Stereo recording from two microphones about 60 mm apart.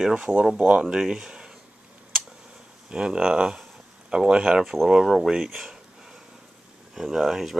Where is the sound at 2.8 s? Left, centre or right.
Centre.